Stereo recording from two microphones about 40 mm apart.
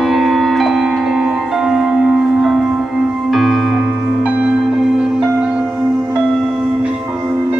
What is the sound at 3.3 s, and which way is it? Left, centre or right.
Music, centre.